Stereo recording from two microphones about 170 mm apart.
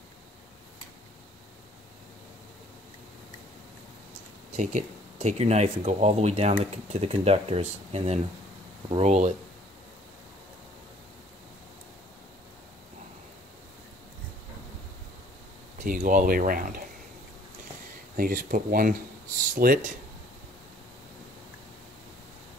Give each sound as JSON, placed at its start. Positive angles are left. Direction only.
{"t": 4.5, "sound": "speech", "side_deg": -45}
{"t": 15.8, "sound": "speech", "side_deg": -50}
{"t": 18.1, "sound": "speech", "side_deg": -60}